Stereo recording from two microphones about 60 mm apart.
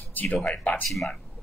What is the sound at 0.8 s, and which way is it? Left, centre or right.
Speech, centre.